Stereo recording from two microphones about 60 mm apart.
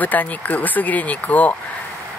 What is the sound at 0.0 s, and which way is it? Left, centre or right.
Speech, left.